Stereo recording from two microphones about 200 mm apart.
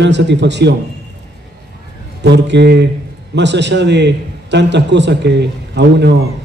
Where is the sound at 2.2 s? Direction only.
60° right (ahead or behind).